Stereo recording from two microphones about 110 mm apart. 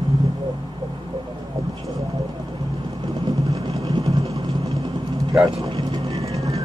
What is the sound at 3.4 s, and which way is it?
Vehicle, 65° right (ahead or behind).